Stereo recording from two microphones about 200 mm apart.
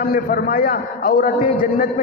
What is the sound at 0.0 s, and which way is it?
A man's voice, 45° left (ahead or behind).